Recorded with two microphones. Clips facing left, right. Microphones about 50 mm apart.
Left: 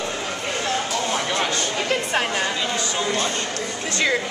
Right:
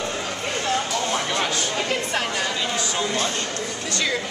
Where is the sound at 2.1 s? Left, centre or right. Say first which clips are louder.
Left 2 dB; left.